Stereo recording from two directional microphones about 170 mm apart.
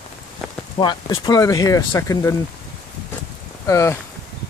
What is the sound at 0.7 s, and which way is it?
Speech, 25° left (ahead or behind).